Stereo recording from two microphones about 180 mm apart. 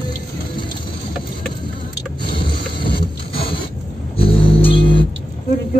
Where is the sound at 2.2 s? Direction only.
30° left (ahead or behind).